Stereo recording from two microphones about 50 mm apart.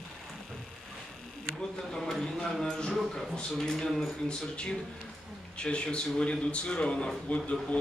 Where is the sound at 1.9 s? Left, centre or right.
Centre.